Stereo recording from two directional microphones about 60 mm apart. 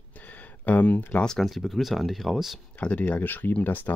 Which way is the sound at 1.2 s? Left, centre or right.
Centre.